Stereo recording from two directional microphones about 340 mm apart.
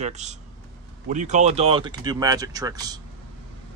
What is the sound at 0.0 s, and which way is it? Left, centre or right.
Speech, centre.